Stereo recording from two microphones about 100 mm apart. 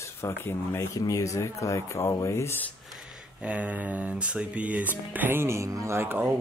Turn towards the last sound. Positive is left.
turn(degrees=-25)  # may be behind; listen again after turning